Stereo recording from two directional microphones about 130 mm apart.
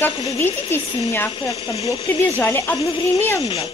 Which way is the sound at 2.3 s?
15° left (ahead or behind).